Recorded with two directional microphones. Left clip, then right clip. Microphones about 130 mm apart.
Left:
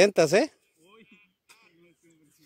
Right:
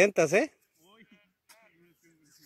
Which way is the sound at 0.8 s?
20° right (ahead or behind).